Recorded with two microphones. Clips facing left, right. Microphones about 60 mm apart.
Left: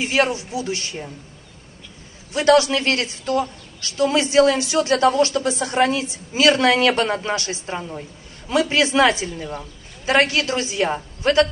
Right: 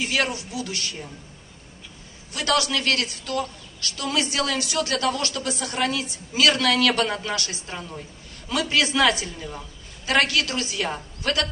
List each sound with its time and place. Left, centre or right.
0.0 s a woman's voice: left
2.3 s a woman's voice: left